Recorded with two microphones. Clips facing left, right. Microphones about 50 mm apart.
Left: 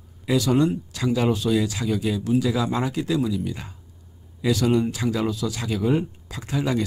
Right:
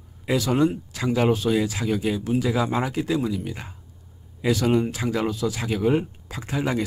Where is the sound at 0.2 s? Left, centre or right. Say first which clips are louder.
Left 1 dB; right.